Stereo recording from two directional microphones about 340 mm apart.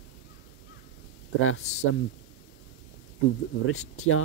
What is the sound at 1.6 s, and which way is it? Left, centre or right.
Speech, centre.